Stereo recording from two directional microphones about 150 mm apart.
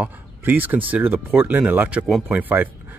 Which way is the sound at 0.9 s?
10° right (ahead or behind).